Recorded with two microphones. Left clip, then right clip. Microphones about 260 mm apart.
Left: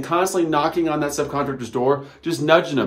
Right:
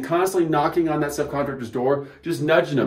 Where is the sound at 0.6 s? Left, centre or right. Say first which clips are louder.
Left 1 dB; centre.